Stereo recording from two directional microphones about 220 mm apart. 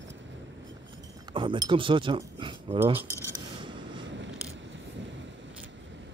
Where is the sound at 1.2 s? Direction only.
20° right (ahead or behind).